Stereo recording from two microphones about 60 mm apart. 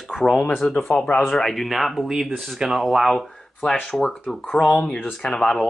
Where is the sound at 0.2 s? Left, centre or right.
Centre.